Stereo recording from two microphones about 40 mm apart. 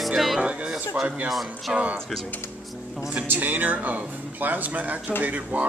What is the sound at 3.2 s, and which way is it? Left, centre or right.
Speech, right.